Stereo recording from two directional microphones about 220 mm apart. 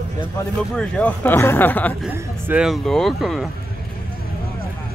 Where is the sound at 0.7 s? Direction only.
5° left (ahead or behind).